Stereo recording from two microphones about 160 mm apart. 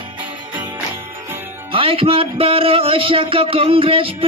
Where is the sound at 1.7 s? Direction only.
35° right (ahead or behind).